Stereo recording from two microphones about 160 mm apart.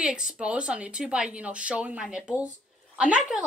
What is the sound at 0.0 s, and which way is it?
Speech, 5° right (ahead or behind).